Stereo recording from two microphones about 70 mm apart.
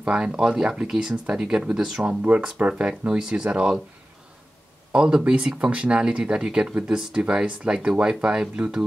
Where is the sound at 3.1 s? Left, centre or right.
Centre.